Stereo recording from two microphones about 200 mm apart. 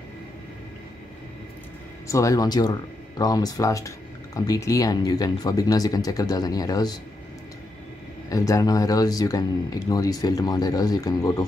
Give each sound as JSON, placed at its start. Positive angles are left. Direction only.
{"t": 2.0, "sound": "speech", "side_deg": 15}
{"t": 8.3, "sound": "speech", "side_deg": 15}